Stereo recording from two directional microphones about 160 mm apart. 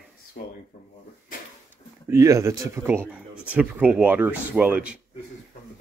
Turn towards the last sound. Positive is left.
turn(degrees=-5)  # may be behind; listen again after turning